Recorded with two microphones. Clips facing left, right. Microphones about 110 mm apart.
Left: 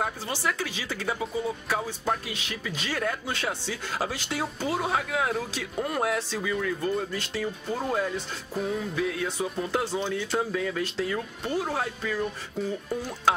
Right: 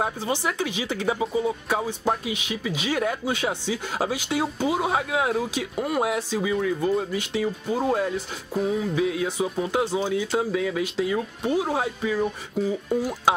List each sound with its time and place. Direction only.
0.0 s speech: 20° right (ahead or behind)
7.7 s speech: 5° right (ahead or behind)